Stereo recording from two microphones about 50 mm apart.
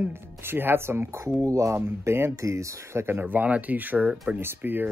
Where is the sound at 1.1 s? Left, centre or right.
Right.